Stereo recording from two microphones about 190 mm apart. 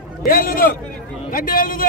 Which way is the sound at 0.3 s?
50° left (ahead or behind).